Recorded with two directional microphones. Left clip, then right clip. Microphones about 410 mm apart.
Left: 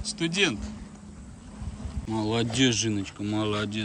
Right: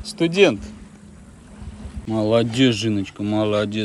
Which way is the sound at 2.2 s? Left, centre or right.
Centre.